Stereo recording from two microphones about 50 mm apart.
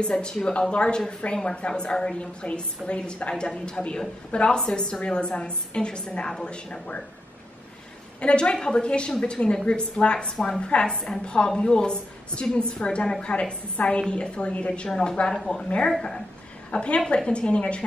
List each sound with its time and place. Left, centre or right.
0.0 s a woman's voice: centre
8.2 s a woman's voice: left
14.9 s a woman's voice: centre
16.7 s a woman's voice: left